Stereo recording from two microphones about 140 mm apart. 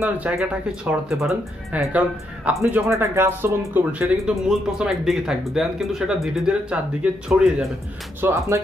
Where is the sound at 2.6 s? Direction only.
20° right (ahead or behind); by 7.7 s 5° right (ahead or behind).